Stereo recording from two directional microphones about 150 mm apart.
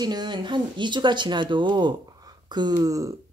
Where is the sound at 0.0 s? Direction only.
30° right (ahead or behind).